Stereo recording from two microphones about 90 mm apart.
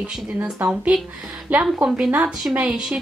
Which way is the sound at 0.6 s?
20° right (ahead or behind).